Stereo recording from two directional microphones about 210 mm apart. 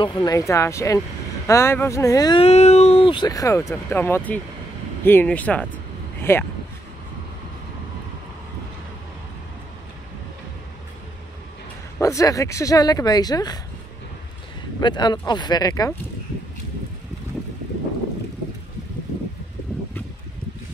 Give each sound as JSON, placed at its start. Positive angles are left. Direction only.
{"t": 0.0, "sound": "speech", "side_deg": 20}
{"t": 12.0, "sound": "speech", "side_deg": 15}
{"t": 14.8, "sound": "speech", "side_deg": 20}